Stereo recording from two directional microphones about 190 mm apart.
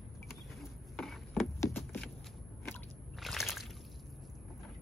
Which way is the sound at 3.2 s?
Centre (ahead or behind).